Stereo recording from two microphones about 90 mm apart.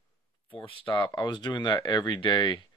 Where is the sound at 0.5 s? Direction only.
80° left.